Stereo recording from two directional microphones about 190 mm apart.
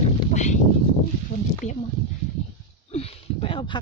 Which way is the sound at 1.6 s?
35° left (ahead or behind).